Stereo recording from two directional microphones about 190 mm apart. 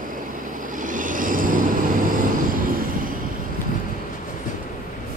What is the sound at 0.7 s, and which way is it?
Vehicle, 45° right (ahead or behind).